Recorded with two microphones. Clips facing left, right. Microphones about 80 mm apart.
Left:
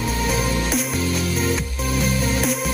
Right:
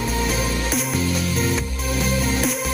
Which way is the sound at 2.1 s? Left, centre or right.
Centre.